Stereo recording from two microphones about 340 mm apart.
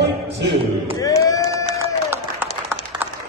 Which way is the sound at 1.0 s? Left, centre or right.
Centre.